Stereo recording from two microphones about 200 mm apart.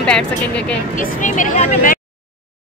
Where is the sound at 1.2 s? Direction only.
35° left (ahead or behind).